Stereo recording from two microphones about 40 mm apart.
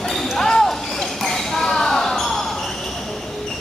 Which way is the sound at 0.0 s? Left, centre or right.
Centre.